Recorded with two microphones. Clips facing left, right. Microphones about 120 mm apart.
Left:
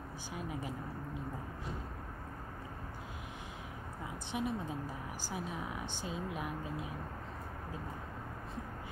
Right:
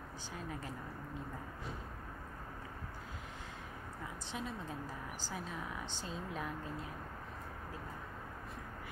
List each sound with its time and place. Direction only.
0.5 s speech: 15° left (ahead or behind)
4.3 s speech: 15° left (ahead or behind)